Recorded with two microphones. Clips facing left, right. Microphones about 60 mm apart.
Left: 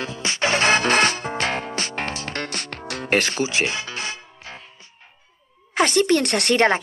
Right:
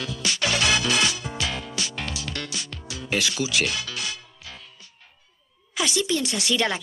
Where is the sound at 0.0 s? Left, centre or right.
Left.